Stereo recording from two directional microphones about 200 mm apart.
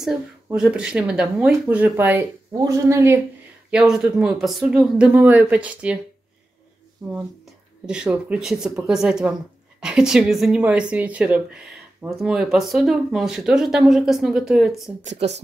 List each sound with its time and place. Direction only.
0.0 s speech: 5° right (ahead or behind)
3.7 s speech: 5° right (ahead or behind)
7.0 s speech: 15° right (ahead or behind)
15.0 s speech: 35° right (ahead or behind)